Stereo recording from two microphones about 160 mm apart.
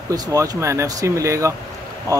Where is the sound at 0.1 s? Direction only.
20° right (ahead or behind).